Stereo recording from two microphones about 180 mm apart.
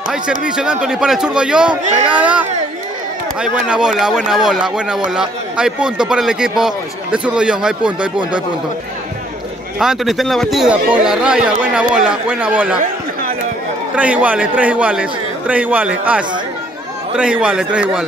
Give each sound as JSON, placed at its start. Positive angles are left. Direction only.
{"t": 0.1, "sound": "a man's voice", "side_deg": -5}
{"t": 9.8, "sound": "speech", "side_deg": 0}
{"t": 13.9, "sound": "a man's voice", "side_deg": -10}